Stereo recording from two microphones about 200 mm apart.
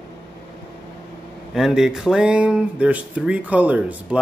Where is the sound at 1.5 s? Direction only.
Centre (ahead or behind).